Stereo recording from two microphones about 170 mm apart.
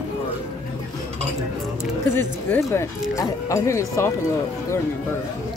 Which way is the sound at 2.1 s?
15° left (ahead or behind).